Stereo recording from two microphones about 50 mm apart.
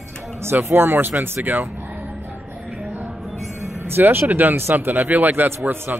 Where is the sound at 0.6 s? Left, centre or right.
Right.